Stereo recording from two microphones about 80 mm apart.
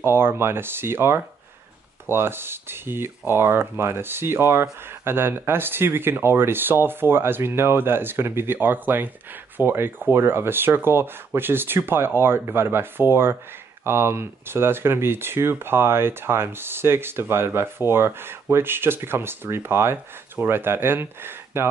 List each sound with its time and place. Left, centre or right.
0.0 s speech: right